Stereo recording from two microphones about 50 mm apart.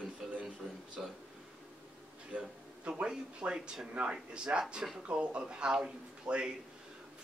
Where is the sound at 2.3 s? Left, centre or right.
Right.